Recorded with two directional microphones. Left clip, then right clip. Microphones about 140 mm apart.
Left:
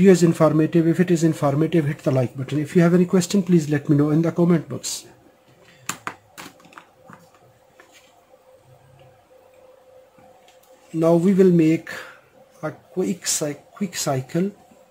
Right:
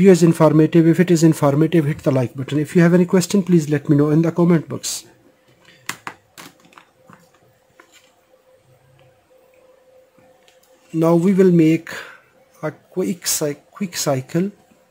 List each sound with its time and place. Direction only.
0.0 s speech: 55° right (ahead or behind); by 1.6 s 85° right
1.7 s speech: 60° right (ahead or behind); by 3.1 s 85° right
3.1 s speech: 50° right (ahead or behind)
11.1 s speech: 50° right (ahead or behind); by 14.4 s 90° right